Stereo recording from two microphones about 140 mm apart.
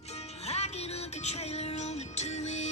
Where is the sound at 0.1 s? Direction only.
50° left (ahead or behind).